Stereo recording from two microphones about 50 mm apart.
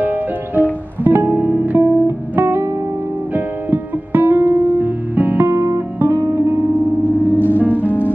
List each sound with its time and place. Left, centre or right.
0.0 s music: right
1.8 s music: right
2.3 s music: right
5.5 s guitar: right
6.3 s music: right
6.7 s music: right